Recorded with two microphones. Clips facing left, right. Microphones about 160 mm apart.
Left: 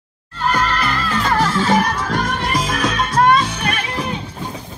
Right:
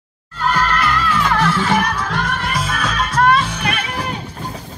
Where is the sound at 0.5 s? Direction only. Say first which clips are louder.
Right 1 dB; 40° left (ahead or behind).